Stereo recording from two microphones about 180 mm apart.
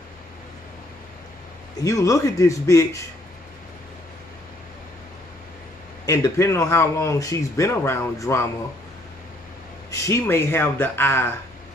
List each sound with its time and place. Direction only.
1.8 s speech: 20° left (ahead or behind)
6.0 s speech: 15° left (ahead or behind)
9.8 s speech: 15° left (ahead or behind)